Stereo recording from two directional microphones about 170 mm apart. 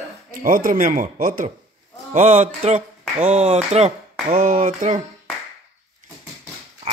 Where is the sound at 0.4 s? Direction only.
50° right (ahead or behind).